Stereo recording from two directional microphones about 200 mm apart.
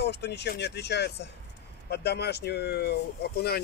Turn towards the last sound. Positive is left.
turn(degrees=55)  # may be behind; listen again after turning